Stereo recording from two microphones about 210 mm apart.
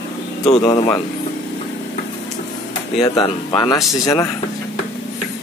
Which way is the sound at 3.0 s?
15° left (ahead or behind).